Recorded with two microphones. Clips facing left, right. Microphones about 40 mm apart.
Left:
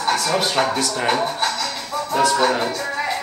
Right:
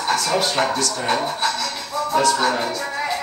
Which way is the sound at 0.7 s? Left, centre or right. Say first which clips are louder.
Left 1 dB; left.